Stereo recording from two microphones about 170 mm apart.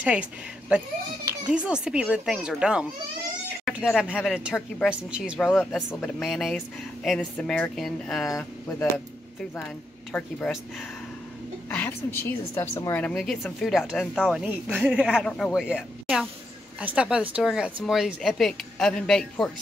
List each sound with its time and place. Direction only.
0.0 s a woman's voice: 5° right (ahead or behind)
5.5 s a woman's voice: 10° left (ahead or behind)
8.3 s speech: 15° left (ahead or behind)
10.1 s speech: 5° left (ahead or behind)
11.7 s a woman's voice: 10° left (ahead or behind)